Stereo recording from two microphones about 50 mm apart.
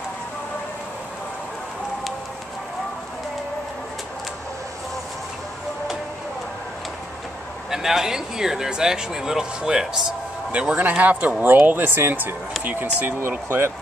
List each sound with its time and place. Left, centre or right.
7.7 s speech: centre
10.5 s a man's voice: right